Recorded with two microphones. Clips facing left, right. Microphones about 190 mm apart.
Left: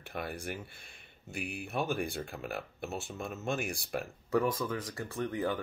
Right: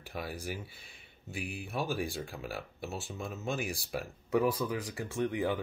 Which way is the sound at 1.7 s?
Centre (ahead or behind).